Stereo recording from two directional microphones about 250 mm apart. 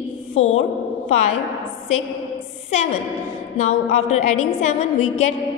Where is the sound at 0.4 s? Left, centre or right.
Left.